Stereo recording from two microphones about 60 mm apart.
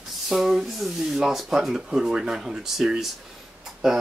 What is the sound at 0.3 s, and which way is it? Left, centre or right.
Speech, centre.